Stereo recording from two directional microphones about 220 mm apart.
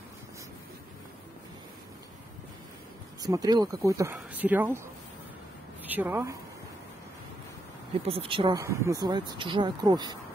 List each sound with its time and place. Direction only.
3.2 s speech: 15° right (ahead or behind)
5.9 s a woman's voice: 10° right (ahead or behind)
8.1 s speech: 25° right (ahead or behind)